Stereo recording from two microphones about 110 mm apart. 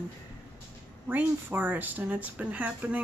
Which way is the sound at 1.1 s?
20° right (ahead or behind).